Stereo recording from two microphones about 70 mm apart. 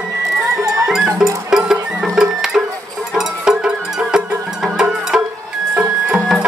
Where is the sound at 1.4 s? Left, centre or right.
Centre.